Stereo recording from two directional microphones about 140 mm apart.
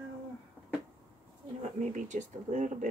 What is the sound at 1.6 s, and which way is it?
Speech, 55° right (ahead or behind).